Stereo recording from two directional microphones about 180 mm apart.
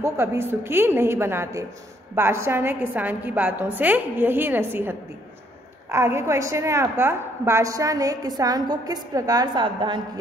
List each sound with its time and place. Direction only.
0.0 s a woman's voice: 15° right (ahead or behind)